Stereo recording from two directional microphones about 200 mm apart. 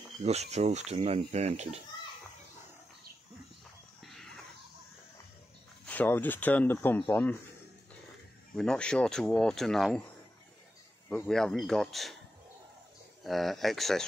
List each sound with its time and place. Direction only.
0.2 s speech: 35° right (ahead or behind)
4.0 s a sound: centre (ahead or behind)
5.9 s speech: 10° left (ahead or behind)
8.5 s speech: 5° left (ahead or behind)
11.1 s speech: 5° left (ahead or behind)
13.2 s speech: centre (ahead or behind)